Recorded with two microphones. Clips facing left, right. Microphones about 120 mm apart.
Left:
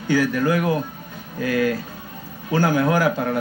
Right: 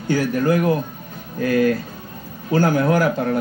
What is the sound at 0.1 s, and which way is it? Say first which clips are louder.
Speech: right 1 dB; 45° right (ahead or behind).